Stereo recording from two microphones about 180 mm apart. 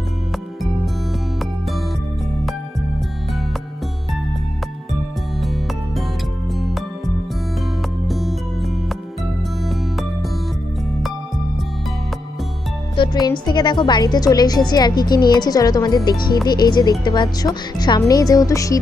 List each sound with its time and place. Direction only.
5.4 s music: centre (ahead or behind)
8.1 s music: centre (ahead or behind)
12.9 s music: 25° left (ahead or behind)
13.5 s a woman's voice: 25° left (ahead or behind)